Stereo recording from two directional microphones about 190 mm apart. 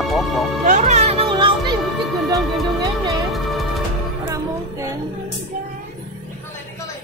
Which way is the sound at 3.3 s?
Centre (ahead or behind).